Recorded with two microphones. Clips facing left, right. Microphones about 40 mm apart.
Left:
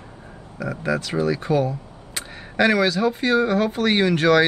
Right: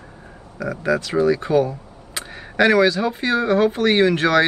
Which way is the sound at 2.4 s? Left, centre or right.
Centre.